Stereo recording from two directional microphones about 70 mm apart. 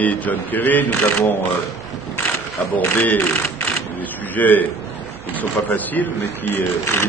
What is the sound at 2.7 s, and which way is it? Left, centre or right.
Speech, left.